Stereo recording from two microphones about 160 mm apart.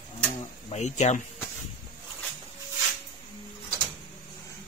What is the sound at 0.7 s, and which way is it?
Speech, 45° left (ahead or behind).